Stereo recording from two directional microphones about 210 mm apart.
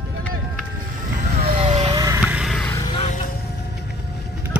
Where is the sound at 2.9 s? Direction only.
30° left (ahead or behind).